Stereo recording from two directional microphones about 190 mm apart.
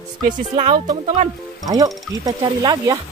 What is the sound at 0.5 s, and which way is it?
Speech, 30° right (ahead or behind).